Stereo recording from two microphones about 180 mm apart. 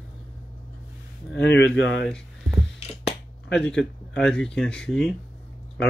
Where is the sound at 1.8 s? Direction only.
80° left.